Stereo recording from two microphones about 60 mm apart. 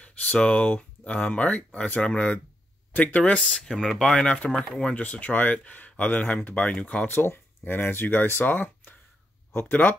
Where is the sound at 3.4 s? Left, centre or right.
Centre.